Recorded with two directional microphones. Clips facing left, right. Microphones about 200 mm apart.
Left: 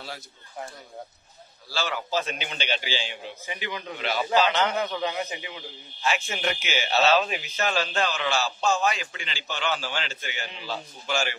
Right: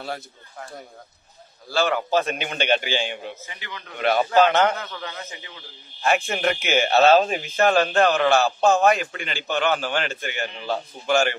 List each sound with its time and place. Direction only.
1.7 s speech: 55° right (ahead or behind)
3.4 s a man's voice: 15° left (ahead or behind)
4.0 s speech: 55° right (ahead or behind)
4.7 s a man's voice: 15° left (ahead or behind)
6.0 s speech: 55° right (ahead or behind)